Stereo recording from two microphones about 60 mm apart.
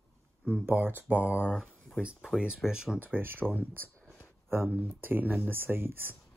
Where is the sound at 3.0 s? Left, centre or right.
Right.